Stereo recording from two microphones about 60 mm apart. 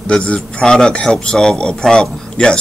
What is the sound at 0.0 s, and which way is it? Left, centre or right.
A man's voice, centre.